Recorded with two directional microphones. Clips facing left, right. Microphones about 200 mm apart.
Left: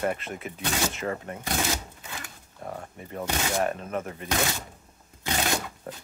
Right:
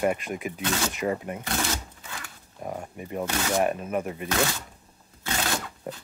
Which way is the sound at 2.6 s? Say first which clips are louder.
Right 3 dB; 15° right (ahead or behind).